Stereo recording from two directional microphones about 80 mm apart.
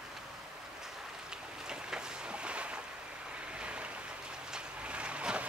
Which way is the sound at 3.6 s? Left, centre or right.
Centre.